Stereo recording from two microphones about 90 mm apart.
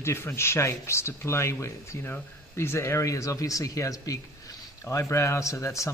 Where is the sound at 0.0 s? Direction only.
30° left (ahead or behind).